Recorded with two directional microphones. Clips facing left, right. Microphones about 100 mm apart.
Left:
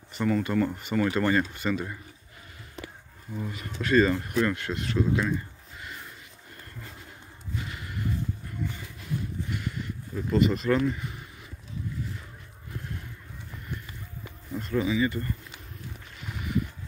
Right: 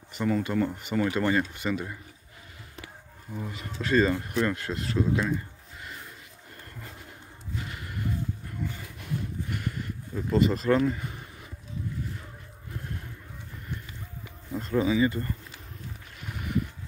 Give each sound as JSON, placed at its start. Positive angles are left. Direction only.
{"t": 0.1, "sound": "speech", "side_deg": -15}
{"t": 3.3, "sound": "speech", "side_deg": -20}
{"t": 9.5, "sound": "a sound", "side_deg": -45}
{"t": 10.1, "sound": "speech", "side_deg": -30}
{"t": 10.9, "sound": "a sound", "side_deg": -35}
{"t": 14.6, "sound": "speech", "side_deg": -30}